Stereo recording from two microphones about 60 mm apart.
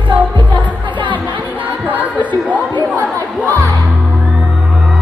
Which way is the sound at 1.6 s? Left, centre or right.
Right.